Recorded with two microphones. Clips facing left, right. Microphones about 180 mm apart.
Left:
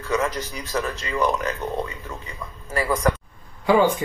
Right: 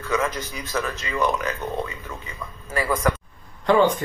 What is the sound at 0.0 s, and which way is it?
Speech, 20° left (ahead or behind).